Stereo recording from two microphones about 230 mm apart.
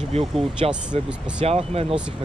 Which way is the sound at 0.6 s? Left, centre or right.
Right.